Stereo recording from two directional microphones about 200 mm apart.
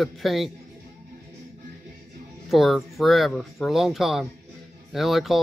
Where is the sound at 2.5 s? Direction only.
Centre (ahead or behind).